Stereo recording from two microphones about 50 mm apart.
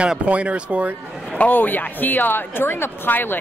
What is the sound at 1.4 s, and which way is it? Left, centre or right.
Speech, left.